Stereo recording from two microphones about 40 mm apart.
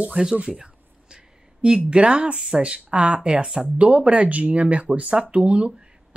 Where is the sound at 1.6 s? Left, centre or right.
Right.